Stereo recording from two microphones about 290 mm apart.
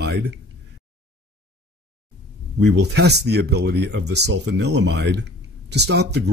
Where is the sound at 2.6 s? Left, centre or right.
Right.